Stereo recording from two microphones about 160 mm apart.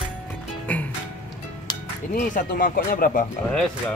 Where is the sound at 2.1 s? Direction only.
60° left (ahead or behind).